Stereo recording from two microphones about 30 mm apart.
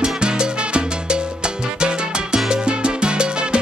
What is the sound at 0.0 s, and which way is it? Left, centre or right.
Salsa music, right.